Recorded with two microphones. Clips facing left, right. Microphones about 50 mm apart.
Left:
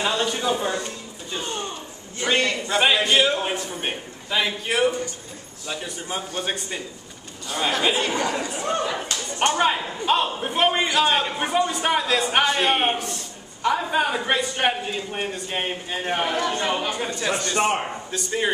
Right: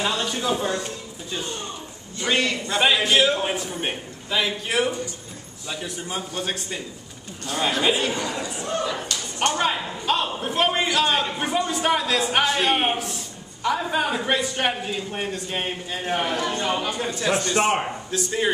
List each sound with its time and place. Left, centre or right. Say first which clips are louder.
0.0 s a man's voice: left 1 dB; centre
7.8 s a man's voice: right 1 dB; centre
8.1 s speech: left 3 dB; left
8.7 s a man's voice: left 1 dB; centre